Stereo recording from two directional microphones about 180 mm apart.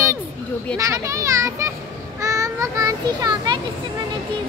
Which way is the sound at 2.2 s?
15° right (ahead or behind).